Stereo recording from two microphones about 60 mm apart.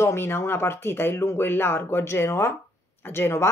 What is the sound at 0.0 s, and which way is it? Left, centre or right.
Speech, left.